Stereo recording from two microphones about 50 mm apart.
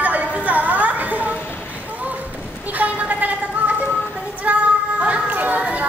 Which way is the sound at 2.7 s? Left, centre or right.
Right.